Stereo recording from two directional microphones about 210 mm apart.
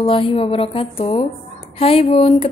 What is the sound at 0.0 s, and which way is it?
A woman's voice, 25° left (ahead or behind).